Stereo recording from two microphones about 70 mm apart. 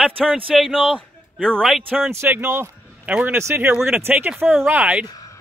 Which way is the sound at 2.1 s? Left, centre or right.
Right.